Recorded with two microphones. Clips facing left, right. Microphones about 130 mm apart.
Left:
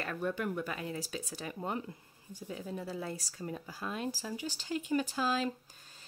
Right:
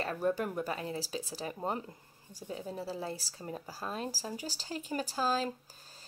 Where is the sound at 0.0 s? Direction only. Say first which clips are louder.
Right 3 dB; 35° right (ahead or behind).